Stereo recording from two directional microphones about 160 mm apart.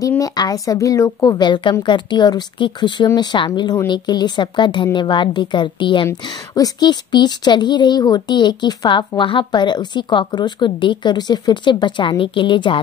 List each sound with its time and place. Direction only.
0.2 s speech: 25° left (ahead or behind)